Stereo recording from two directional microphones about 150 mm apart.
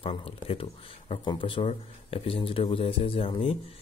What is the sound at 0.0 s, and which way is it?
Speech, 40° left (ahead or behind).